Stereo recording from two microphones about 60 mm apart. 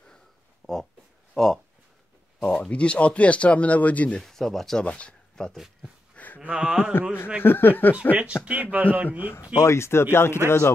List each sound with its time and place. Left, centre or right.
0.6 s speech: centre
1.3 s speech: centre; by 4.2 s left
4.2 s speech: centre
4.8 s speech: centre
6.1 s a sound: left
6.4 s speech: centre
7.4 s speech: left
8.1 s a man's voice: right
9.6 s speech: left